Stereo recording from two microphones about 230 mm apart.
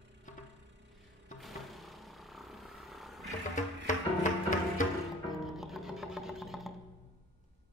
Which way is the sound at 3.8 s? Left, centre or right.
Left.